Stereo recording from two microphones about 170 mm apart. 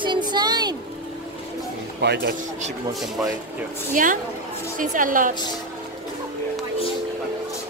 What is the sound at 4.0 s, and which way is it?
A woman's voice, 50° right (ahead or behind).